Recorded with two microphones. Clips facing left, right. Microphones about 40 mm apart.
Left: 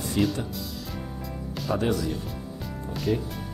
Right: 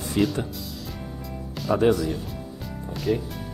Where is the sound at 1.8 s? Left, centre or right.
Centre.